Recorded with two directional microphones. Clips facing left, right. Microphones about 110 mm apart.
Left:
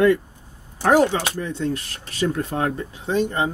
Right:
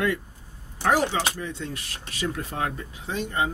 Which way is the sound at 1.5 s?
35° left (ahead or behind).